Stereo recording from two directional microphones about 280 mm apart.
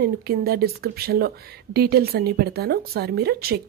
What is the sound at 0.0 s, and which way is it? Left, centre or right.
A woman's voice, right.